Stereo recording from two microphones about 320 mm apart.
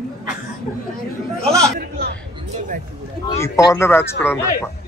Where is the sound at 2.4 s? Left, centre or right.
Right.